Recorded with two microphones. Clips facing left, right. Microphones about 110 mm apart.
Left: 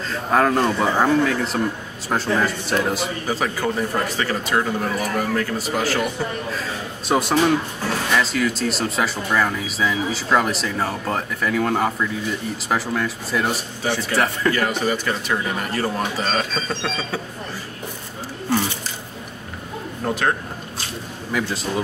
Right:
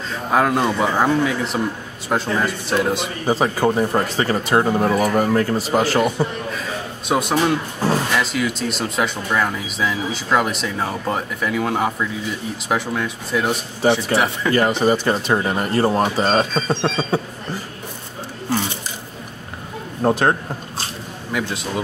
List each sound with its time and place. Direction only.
0.1 s speech: 5° right (ahead or behind)
3.3 s speech: 30° right (ahead or behind)
4.9 s a man's voice: 20° right (ahead or behind)
7.1 s speech: centre (ahead or behind)
14.5 s speech: 25° right (ahead or behind)
20.0 s speech: 35° right (ahead or behind)
21.3 s speech: 5° right (ahead or behind)